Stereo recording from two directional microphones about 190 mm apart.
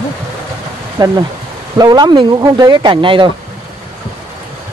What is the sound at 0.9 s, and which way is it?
Speech, 20° right (ahead or behind).